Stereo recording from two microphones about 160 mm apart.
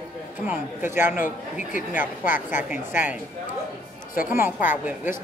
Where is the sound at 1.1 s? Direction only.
55° left (ahead or behind).